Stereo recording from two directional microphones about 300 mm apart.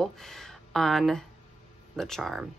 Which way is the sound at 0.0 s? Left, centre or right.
Centre.